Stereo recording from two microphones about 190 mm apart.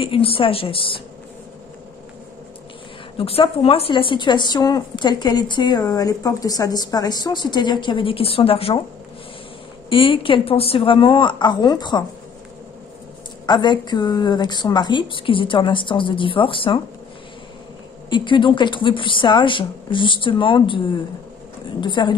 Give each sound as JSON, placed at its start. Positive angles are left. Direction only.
{"t": 0.0, "sound": "speech", "side_deg": 30}
{"t": 3.2, "sound": "speech", "side_deg": 30}
{"t": 9.8, "sound": "speech", "side_deg": 30}
{"t": 13.5, "sound": "speech", "side_deg": 25}
{"t": 18.1, "sound": "speech", "side_deg": 25}
{"t": 21.8, "sound": "speech", "side_deg": 25}